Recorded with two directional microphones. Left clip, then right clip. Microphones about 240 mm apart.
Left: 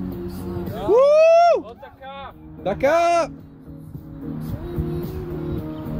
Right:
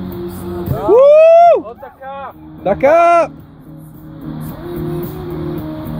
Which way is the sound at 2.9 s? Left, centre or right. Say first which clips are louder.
Right 9 dB; centre.